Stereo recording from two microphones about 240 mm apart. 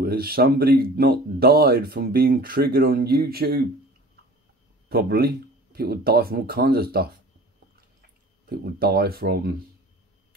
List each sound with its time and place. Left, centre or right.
0.0 s speech: right
4.8 s speech: right
8.5 s speech: right